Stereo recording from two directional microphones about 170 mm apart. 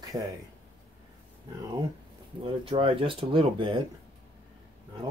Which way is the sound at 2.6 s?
30° right (ahead or behind).